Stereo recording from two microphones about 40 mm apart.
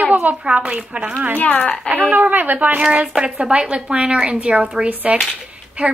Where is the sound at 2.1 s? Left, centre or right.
Right.